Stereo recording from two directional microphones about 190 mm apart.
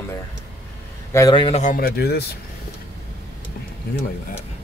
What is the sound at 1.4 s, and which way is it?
Speech, 30° left (ahead or behind).